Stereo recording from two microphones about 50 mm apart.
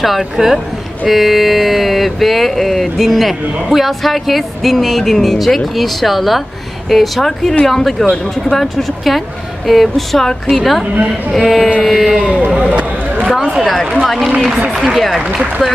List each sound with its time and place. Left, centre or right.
0.0 s speech: centre
12.2 s speech: right
13.9 s speech: centre